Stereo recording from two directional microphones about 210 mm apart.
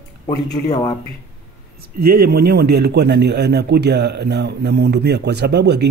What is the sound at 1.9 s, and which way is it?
Speech, 45° right (ahead or behind).